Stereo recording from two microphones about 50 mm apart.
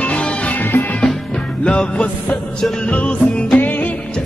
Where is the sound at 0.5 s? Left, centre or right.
Left.